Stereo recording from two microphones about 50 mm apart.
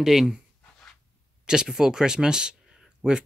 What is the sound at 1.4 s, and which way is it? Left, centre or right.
Speech, centre.